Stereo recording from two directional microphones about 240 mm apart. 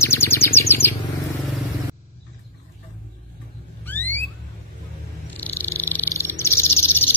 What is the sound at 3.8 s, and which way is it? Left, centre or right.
Vehicle, centre.